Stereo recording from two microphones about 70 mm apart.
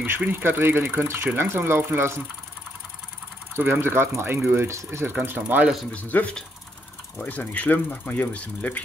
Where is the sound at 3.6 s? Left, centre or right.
Right.